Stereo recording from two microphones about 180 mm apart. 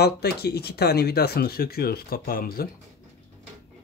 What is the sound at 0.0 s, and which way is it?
Speech, 60° left (ahead or behind).